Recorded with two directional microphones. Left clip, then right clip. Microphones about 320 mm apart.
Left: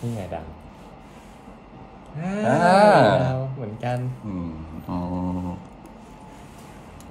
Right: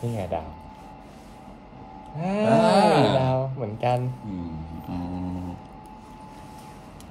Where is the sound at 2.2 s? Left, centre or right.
Centre.